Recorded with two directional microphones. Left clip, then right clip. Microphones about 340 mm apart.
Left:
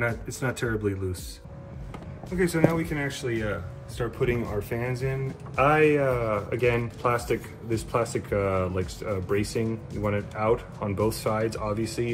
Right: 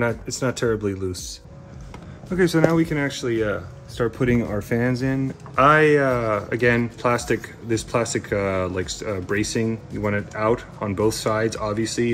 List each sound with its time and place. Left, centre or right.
0.4 s speech: centre
2.3 s speech: right